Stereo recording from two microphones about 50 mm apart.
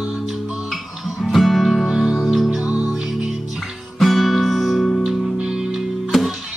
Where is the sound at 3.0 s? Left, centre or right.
Centre.